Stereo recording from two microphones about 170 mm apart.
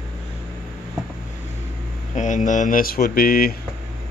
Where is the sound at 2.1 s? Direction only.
45° left (ahead or behind).